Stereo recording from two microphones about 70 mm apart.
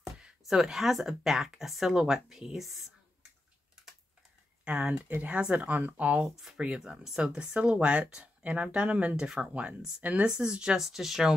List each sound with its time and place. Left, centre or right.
0.2 s speech: centre
4.6 s speech: centre
6.2 s speech: centre